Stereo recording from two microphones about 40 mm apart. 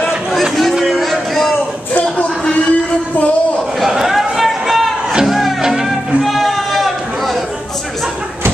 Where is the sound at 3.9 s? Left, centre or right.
Centre.